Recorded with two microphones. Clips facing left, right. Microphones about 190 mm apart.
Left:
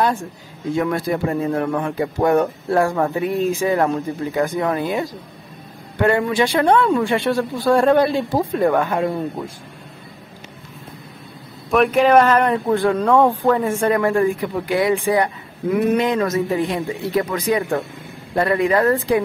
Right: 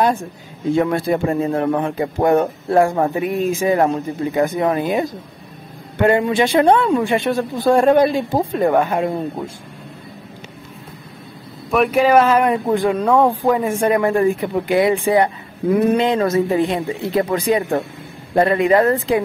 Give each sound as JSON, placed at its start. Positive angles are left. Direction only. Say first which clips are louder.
{"t": 0.7, "sound": "a man's voice", "louder": "right 2 dB", "side_deg": -25}
{"t": 6.0, "sound": "a man's voice", "louder": "right 2 dB", "side_deg": -20}
{"t": 11.7, "sound": "a man's voice", "louder": "even", "side_deg": -5}